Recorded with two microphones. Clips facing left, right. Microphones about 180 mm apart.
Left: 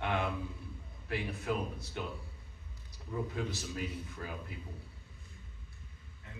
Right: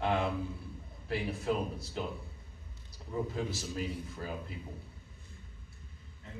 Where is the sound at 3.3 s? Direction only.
30° right (ahead or behind).